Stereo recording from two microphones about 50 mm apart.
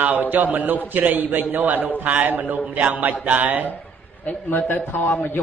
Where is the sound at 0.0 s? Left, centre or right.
Right.